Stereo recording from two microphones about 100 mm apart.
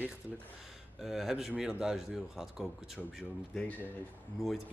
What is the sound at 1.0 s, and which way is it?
Speech, 5° right (ahead or behind).